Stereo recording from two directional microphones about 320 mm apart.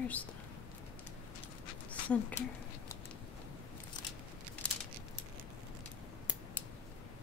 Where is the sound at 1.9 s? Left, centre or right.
Centre.